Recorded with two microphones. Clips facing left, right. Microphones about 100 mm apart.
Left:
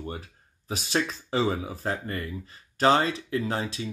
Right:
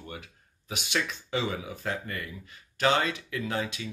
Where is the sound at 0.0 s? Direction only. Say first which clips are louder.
Left 6 dB; 35° left (ahead or behind).